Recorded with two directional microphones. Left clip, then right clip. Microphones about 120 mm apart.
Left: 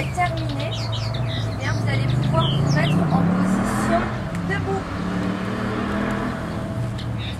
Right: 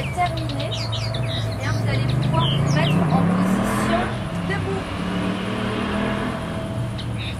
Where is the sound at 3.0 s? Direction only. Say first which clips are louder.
Right 1 dB; 15° right (ahead or behind).